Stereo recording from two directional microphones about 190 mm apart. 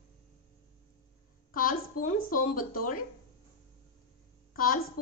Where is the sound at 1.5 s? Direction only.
45° left (ahead or behind).